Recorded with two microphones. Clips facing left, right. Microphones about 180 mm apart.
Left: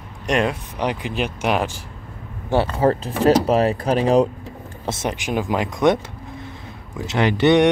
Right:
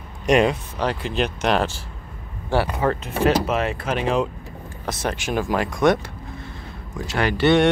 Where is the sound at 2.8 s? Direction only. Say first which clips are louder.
Left 3 dB; 35° left (ahead or behind).